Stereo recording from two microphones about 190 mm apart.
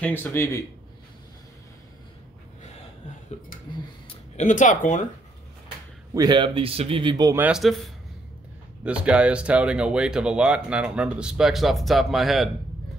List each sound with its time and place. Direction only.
0.0 s speech: 10° left (ahead or behind)
4.1 s speech: 40° left (ahead or behind)
6.1 s speech: 25° right (ahead or behind)
7.4 s speech: centre (ahead or behind)